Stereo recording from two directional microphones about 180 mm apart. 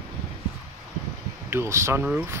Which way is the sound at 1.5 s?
15° right (ahead or behind).